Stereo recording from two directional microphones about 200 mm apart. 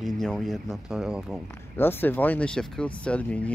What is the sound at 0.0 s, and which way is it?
Speech, centre (ahead or behind).